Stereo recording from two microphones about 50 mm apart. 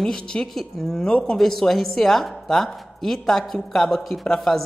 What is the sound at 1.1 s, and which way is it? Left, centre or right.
Speech, centre.